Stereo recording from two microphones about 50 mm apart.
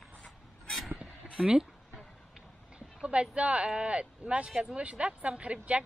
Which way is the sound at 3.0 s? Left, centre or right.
Right.